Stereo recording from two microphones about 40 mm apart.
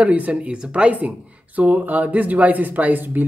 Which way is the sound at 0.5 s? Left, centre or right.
Right.